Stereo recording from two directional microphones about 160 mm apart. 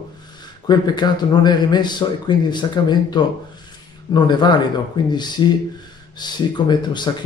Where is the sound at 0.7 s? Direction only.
30° left (ahead or behind).